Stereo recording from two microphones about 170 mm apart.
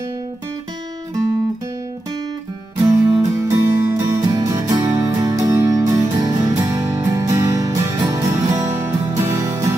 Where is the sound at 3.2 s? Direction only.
20° right (ahead or behind).